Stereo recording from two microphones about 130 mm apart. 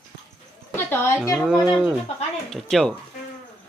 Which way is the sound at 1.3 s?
Centre (ahead or behind).